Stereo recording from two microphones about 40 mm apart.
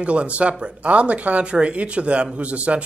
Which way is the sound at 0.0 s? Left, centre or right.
Right.